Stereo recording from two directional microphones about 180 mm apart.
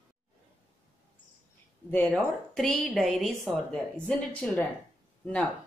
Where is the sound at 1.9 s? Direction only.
10° left (ahead or behind).